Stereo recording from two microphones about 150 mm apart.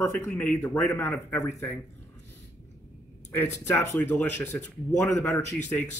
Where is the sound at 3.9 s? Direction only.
10° left (ahead or behind).